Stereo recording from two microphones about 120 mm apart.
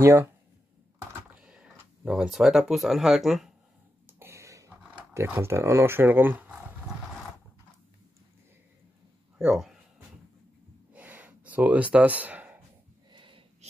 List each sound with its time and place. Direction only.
0.0 s speech: 20° right (ahead or behind)
1.3 s speech: 5° right (ahead or behind)
4.2 s a sound: 25° right (ahead or behind)
5.1 s speech: 20° right (ahead or behind)
9.4 s speech: 5° right (ahead or behind)
10.9 s a sound: 15° right (ahead or behind)
13.1 s sniff: 45° right (ahead or behind)